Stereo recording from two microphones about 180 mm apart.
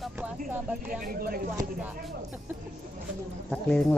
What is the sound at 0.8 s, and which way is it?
Speech, 55° right (ahead or behind).